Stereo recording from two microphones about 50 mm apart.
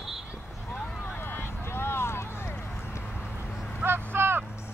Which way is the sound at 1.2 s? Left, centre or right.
Left.